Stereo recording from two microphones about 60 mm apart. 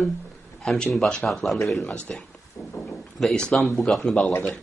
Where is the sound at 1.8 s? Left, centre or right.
Centre.